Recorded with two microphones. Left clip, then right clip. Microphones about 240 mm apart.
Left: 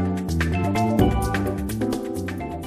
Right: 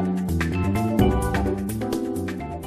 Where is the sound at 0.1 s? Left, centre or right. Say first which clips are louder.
Left 1 dB; centre.